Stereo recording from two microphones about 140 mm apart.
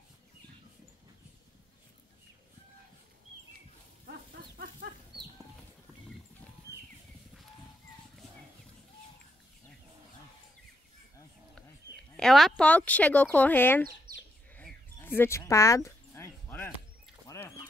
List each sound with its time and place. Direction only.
4.0 s livestock: 85° right
12.2 s speech: centre (ahead or behind)
14.5 s a sound: 15° left (ahead or behind)